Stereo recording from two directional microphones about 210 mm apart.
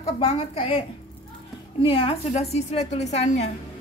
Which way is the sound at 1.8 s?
25° left (ahead or behind).